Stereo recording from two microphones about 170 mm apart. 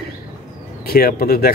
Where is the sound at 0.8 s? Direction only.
65° left (ahead or behind).